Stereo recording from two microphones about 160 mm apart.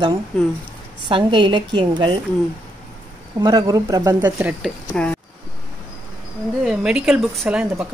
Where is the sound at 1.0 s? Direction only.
30° right (ahead or behind).